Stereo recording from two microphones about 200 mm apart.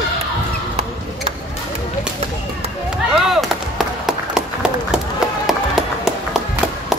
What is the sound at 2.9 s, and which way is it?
Clapping, centre (ahead or behind).